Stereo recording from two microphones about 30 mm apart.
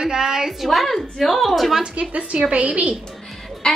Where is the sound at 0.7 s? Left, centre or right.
Centre.